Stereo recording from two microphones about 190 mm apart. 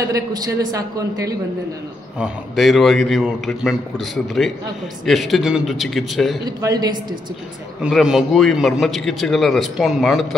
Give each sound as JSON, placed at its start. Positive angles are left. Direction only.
{"t": 0.0, "sound": "a man's voice", "side_deg": -20}
{"t": 2.1, "sound": "a man's voice", "side_deg": -5}
{"t": 6.6, "sound": "a woman's voice", "side_deg": -20}
{"t": 7.8, "sound": "a man's voice", "side_deg": -5}